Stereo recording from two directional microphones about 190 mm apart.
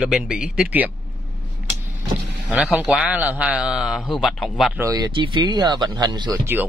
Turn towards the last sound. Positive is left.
turn(degrees=-20)  # may be behind; listen again after turning